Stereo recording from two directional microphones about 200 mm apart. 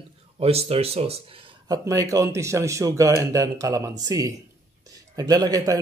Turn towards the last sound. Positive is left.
turn(degrees=-20)  # may be behind; listen again after turning